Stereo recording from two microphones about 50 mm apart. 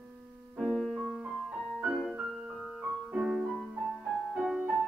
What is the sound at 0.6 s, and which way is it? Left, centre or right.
Music, centre.